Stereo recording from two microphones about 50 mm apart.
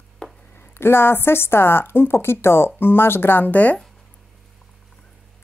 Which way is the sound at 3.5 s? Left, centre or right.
Left.